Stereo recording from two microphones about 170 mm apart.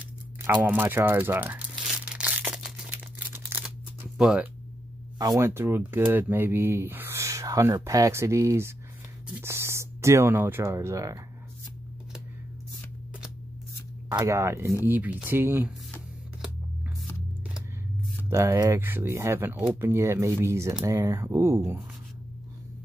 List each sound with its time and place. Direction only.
0.4 s speech: 10° right (ahead or behind)
2.1 s a sound: 5° right (ahead or behind)
4.2 s speech: 5° right (ahead or behind)
5.2 s speech: 20° right (ahead or behind)
14.1 s speech: 15° right (ahead or behind)
18.3 s speech: 15° right (ahead or behind)